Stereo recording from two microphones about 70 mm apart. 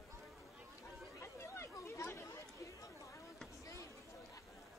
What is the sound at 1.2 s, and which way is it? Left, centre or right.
Chatter, left.